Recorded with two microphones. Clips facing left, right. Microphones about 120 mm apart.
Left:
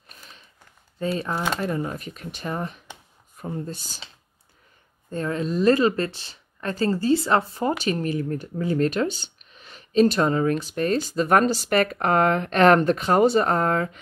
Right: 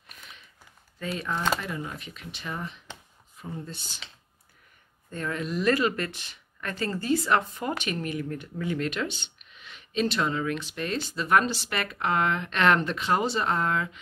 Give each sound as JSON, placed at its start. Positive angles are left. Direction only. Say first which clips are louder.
{"t": 0.1, "sound": "a sound", "louder": "left 1 dB", "side_deg": 35}
{"t": 0.9, "sound": "speech", "louder": "left 5 dB", "side_deg": 30}
{"t": 5.1, "sound": "speech", "louder": "left 5 dB", "side_deg": 35}